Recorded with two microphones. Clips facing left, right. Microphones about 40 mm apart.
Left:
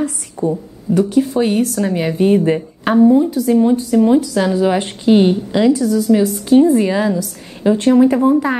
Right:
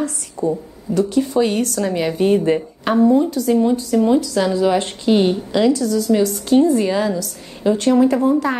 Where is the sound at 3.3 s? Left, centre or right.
Centre.